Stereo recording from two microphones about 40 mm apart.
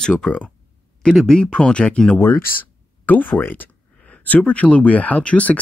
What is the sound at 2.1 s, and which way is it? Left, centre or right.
Speech, left.